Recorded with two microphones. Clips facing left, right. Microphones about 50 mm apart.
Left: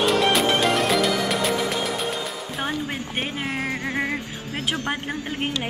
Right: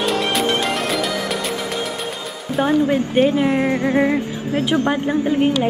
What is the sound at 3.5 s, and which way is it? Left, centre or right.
Music, right.